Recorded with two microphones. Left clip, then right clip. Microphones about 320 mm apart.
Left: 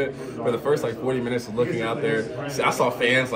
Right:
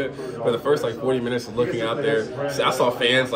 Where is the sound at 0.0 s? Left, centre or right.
Centre.